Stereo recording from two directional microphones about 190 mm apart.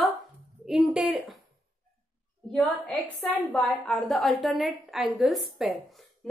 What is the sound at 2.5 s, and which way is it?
A woman's voice, 5° left (ahead or behind).